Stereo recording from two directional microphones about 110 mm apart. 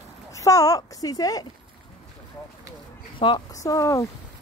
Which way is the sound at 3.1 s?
50° left (ahead or behind).